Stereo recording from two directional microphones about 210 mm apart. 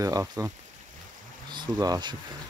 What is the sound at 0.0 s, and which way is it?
Speech, 15° right (ahead or behind).